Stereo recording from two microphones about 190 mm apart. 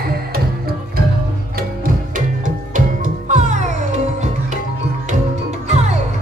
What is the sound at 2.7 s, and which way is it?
Music, 40° right (ahead or behind).